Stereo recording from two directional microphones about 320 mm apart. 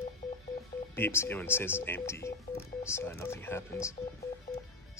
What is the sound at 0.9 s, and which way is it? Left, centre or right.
Speech, centre.